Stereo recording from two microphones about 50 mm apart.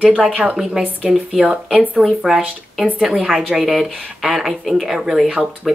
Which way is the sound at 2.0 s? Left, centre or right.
Centre.